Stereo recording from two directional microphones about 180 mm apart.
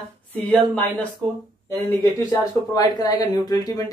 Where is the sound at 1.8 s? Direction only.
20° left (ahead or behind).